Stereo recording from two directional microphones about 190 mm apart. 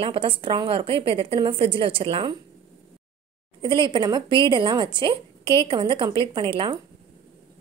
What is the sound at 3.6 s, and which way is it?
Speech, 25° right (ahead or behind).